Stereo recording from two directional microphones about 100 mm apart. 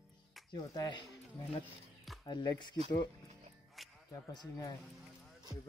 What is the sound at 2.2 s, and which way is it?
Speech, 45° left (ahead or behind).